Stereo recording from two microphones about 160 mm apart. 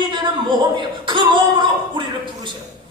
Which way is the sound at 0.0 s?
30° right (ahead or behind).